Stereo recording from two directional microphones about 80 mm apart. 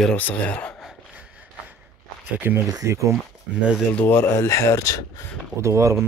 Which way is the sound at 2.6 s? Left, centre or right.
Right.